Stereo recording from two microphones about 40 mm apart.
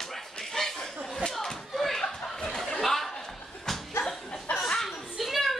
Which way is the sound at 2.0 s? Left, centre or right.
Centre.